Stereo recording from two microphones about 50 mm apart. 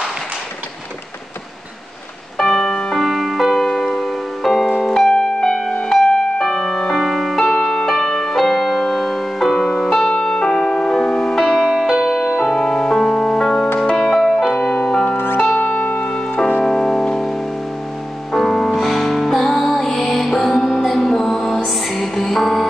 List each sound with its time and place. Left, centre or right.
2.3 s music: centre
4.7 s piano: centre
5.1 s music: centre
7.4 s music: centre
9.9 s music: centre
12.4 s music: centre
13.9 s music: centre
14.6 s music: centre
15.1 s music: left
15.5 s music: left
16.6 s music: centre